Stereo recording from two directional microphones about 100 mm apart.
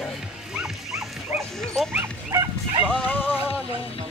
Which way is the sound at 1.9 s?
25° right (ahead or behind).